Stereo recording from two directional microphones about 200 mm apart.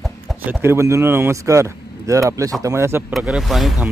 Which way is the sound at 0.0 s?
5° right (ahead or behind).